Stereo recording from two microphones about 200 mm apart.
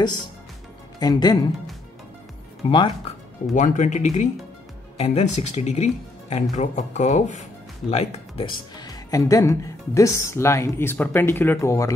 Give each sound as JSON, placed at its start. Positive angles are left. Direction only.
{"t": 0.9, "sound": "speech", "side_deg": 20}
{"t": 2.7, "sound": "speech", "side_deg": 25}
{"t": 3.5, "sound": "speech", "side_deg": 40}